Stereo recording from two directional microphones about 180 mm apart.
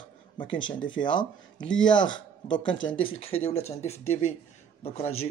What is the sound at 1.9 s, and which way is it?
Speech, 25° left (ahead or behind).